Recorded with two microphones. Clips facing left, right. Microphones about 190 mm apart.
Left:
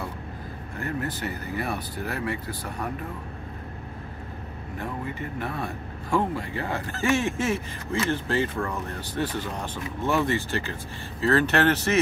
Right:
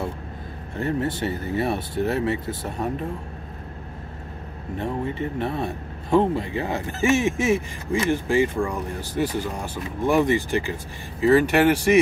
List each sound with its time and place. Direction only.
0.7 s speech: 25° right (ahead or behind)
4.7 s a man's voice: 25° right (ahead or behind)